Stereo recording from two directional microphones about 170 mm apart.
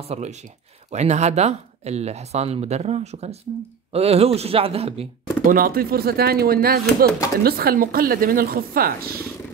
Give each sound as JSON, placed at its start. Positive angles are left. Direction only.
{"t": 0.1, "sound": "speech", "side_deg": -40}
{"t": 5.4, "sound": "speech", "side_deg": -55}